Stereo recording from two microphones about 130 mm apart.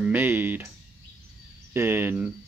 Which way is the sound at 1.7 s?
15° right (ahead or behind).